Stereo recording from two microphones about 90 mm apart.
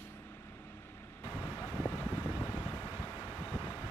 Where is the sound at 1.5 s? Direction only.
25° left (ahead or behind).